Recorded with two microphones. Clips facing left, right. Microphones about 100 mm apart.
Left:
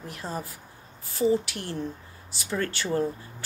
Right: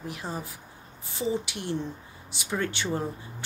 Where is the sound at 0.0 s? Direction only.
15° right (ahead or behind).